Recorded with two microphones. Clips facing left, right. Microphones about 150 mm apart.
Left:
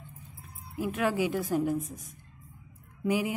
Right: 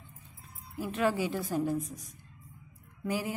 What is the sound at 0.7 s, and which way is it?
Speech, 15° left (ahead or behind).